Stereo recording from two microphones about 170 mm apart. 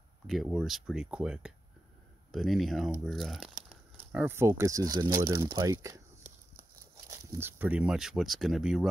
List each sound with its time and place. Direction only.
0.3 s speech: centre (ahead or behind); by 5.3 s 25° right (ahead or behind)
5.6 s a sound: 20° right (ahead or behind)
7.1 s speech: 15° right (ahead or behind)